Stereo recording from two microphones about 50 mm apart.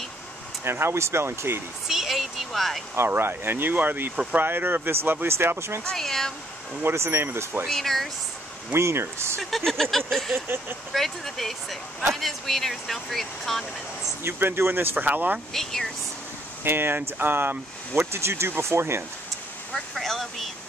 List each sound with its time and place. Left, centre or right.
0.7 s speech: right
1.9 s a sound: centre
3.0 s speech: right
5.9 s a sound: centre
6.8 s speech: right
7.6 s speech: centre
8.7 s speech: right
9.7 s speech: centre
14.2 s speech: right
15.5 s speech: centre
16.6 s speech: right
19.7 s speech: centre